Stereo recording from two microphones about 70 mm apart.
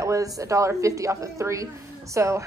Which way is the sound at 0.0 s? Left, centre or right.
Right.